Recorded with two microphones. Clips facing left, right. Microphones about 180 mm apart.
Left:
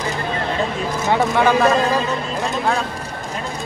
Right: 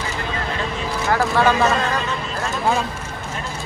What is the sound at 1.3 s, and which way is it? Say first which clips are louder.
Speech: left 1 dB; 15° left (ahead or behind).